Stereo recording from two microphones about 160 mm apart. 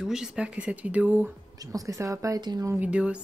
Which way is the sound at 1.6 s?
20° right (ahead or behind).